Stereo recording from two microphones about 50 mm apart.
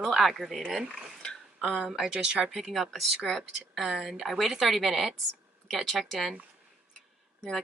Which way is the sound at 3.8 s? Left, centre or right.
Centre.